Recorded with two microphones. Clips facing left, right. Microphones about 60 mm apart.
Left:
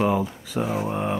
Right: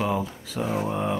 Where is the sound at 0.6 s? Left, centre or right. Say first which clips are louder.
Right 1 dB; centre.